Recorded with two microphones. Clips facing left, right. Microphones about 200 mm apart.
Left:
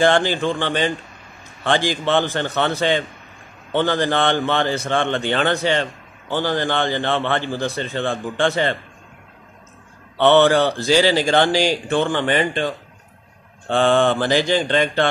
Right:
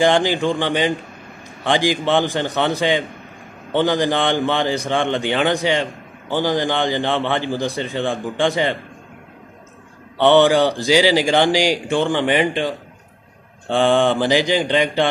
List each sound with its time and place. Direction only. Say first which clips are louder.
0.0 s a man's voice: right 1 dB; 15° right (ahead or behind)
10.1 s a man's voice: right 1 dB; 15° right (ahead or behind)